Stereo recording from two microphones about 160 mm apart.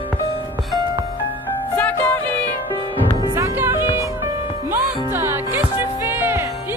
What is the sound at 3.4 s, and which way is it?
Music, 15° right (ahead or behind).